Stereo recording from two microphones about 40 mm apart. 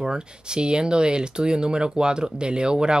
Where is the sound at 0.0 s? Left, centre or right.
Right.